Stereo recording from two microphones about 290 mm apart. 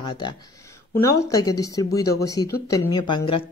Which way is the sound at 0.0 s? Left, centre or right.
Centre.